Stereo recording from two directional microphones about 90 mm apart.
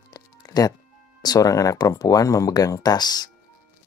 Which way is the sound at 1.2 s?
45° left (ahead or behind).